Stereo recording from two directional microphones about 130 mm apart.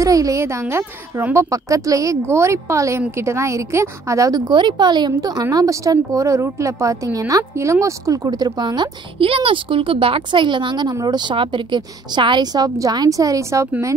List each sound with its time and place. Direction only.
0.0 s speech: 25° right (ahead or behind)